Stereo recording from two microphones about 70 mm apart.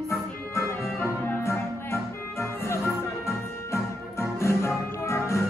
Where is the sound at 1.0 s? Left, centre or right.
Left.